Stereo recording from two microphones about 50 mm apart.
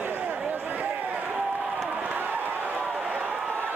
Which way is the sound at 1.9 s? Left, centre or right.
Right.